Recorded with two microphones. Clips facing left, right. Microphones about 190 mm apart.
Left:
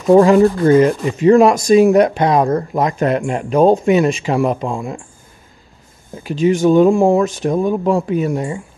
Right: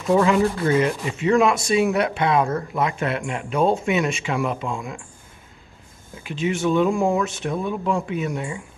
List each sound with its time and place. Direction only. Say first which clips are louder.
0.1 s speech: left 9 dB; 40° left (ahead or behind)
6.1 s speech: left 9 dB; 40° left (ahead or behind)